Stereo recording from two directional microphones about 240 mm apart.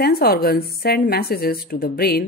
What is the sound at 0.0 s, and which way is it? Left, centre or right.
Speech, left.